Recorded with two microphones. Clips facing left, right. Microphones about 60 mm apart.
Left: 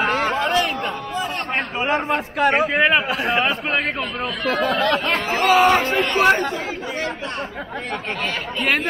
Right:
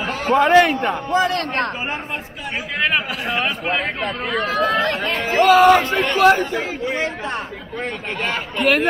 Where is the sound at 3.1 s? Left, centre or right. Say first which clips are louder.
Left 3 dB; centre.